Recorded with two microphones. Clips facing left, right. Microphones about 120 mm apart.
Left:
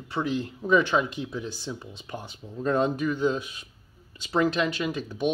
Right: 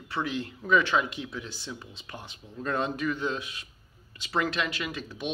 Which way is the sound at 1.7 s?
20° left (ahead or behind).